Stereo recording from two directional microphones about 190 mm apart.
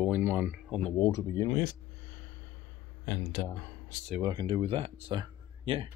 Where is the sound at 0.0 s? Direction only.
10° right (ahead or behind).